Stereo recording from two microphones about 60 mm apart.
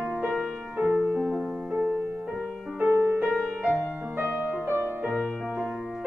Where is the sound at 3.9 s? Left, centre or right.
Right.